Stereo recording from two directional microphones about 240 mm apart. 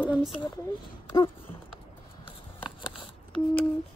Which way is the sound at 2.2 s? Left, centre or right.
Left.